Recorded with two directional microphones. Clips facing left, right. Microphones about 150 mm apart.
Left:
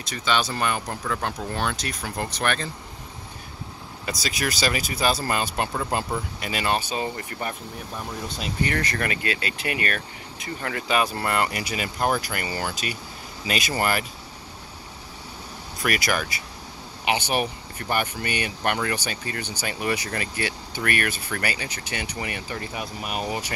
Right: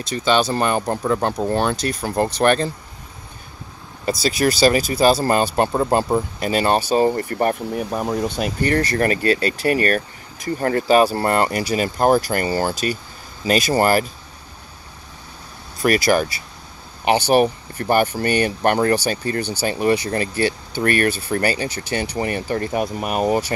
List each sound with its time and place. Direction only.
0.1 s speech: 30° right (ahead or behind)
4.0 s speech: 30° right (ahead or behind); by 7.8 s 50° right (ahead or behind)
7.9 s speech: 80° right
8.4 s speech: 55° right (ahead or behind)
8.7 s speech: 35° right (ahead or behind)
15.8 s speech: 35° right (ahead or behind)